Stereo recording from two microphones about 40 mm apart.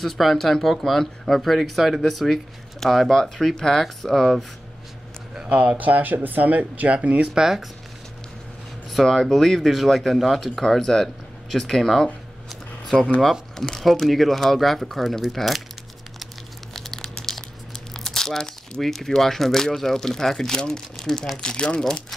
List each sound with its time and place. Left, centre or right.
0.0 s speech: centre
5.5 s speech: right
8.9 s speech: centre
11.5 s a sound: centre
13.6 s speech: centre
16.7 s crumpling: centre
17.9 s speech: centre